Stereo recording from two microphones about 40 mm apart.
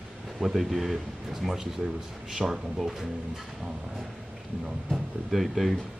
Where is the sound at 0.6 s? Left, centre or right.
Centre.